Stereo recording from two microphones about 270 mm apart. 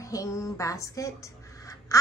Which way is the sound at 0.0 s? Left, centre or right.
Centre.